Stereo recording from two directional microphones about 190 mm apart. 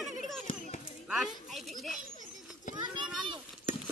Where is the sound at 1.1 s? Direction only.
Centre (ahead or behind).